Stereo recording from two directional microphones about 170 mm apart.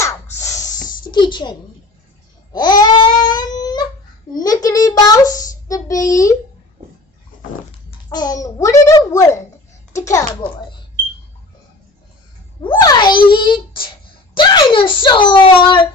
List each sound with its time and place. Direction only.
0.0 s spray: 20° left (ahead or behind)
1.1 s speech: 25° left (ahead or behind)
2.5 s babbling: 25° left (ahead or behind)
4.3 s a child's voice: 20° left (ahead or behind)
4.6 s a sound: 20° left (ahead or behind)
8.1 s a child's voice: 25° left (ahead or behind)
12.6 s a child's voice: 25° left (ahead or behind)